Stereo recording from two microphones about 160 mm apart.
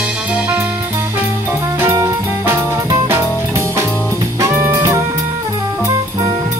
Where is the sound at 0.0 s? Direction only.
5° right (ahead or behind).